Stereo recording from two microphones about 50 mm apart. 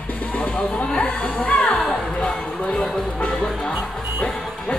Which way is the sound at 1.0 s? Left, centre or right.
Left.